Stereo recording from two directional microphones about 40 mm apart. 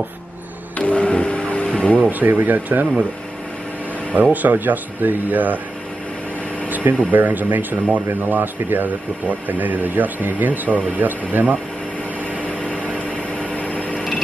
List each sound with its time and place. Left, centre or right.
0.7 s printer: left
2.0 s speech: right
4.1 s speech: right
6.7 s air conditioning: right
7.1 s speech: right
12.4 s vehicle: left